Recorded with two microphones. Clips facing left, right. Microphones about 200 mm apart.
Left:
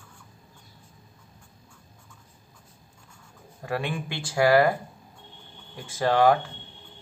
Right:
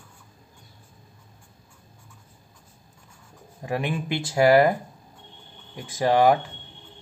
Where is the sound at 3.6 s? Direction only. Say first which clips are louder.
Right 2 dB; 15° right (ahead or behind).